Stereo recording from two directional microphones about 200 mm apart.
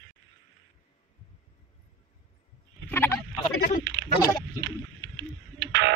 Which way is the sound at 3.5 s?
50° left (ahead or behind).